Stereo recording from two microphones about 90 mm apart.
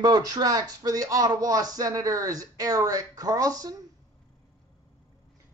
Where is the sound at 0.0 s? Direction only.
45° right (ahead or behind).